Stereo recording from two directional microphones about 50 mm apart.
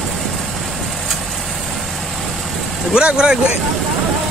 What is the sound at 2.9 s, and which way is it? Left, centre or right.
Speech, centre.